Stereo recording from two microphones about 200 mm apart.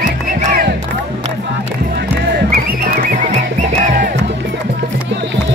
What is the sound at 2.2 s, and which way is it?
Music, 50° right (ahead or behind).